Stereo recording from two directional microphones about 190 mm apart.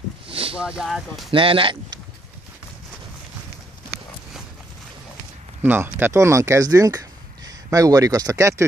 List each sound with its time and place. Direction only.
0.3 s a sound: 30° right (ahead or behind)
0.6 s speech: 5° right (ahead or behind)
1.3 s speech: 30° right (ahead or behind)
5.6 s speech: 10° right (ahead or behind)